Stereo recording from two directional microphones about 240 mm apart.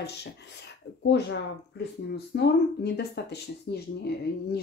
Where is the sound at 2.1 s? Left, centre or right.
Left.